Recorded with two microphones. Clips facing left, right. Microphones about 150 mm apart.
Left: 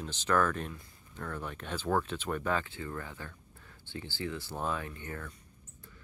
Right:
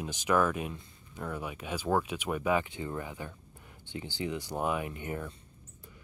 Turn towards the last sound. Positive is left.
turn(degrees=-20)  # may be behind; listen again after turning